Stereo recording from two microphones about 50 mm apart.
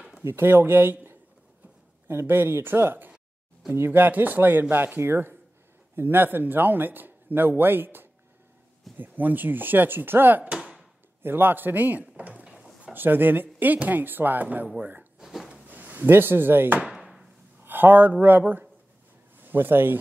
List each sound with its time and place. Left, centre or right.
0.2 s a man's voice: right
12.9 s a man's voice: right
15.1 s a sound: centre
15.7 s speech: right
16.8 s a sound: centre
17.6 s speech: right